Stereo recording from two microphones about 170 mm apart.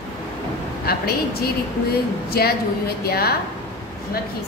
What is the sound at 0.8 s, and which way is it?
A woman's voice, 65° left (ahead or behind).